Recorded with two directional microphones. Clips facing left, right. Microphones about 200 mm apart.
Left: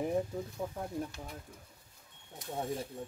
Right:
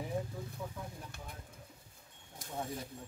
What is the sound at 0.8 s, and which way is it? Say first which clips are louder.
Speech: left 6 dB; 50° left (ahead or behind).